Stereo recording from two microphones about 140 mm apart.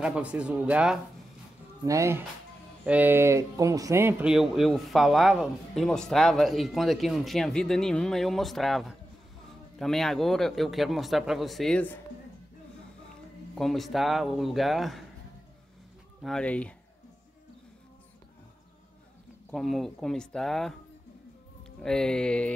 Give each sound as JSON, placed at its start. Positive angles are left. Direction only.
{"t": 0.0, "sound": "speech", "side_deg": -10}
{"t": 1.9, "sound": "speech", "side_deg": -20}
{"t": 4.2, "sound": "speech", "side_deg": -5}
{"t": 13.6, "sound": "speech", "side_deg": 0}
{"t": 16.2, "sound": "speech", "side_deg": 5}
{"t": 19.5, "sound": "speech", "side_deg": 0}